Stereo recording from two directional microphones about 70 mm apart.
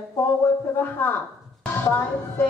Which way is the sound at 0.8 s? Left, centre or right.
Left.